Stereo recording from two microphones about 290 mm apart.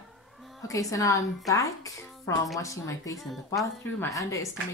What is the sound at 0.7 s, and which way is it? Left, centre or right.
A woman's voice, centre.